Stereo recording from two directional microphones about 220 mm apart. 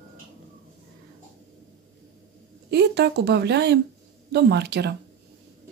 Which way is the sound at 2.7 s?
50° right (ahead or behind).